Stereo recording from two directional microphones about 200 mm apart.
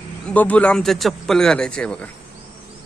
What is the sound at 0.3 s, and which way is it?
Speech, 5° left (ahead or behind).